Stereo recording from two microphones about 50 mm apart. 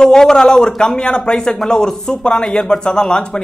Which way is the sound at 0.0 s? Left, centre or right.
Centre.